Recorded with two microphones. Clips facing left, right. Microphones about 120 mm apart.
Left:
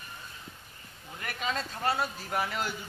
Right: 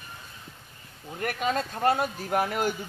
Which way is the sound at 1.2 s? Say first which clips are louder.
Right 7 dB; 50° right (ahead or behind).